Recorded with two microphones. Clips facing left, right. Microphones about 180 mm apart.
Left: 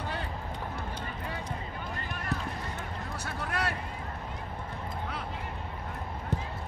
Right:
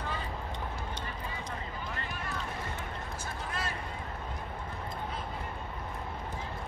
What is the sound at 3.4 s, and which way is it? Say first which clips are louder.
Vehicle: left 6 dB; 70° left (ahead or behind).